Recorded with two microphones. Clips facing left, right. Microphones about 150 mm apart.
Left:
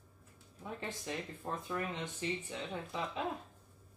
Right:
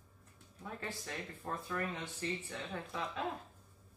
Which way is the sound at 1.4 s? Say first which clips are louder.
Even; 20° left (ahead or behind).